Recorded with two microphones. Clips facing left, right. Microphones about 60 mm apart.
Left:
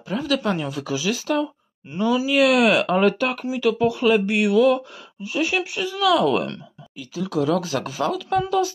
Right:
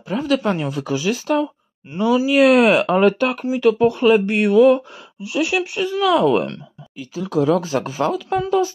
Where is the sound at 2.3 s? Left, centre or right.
Right.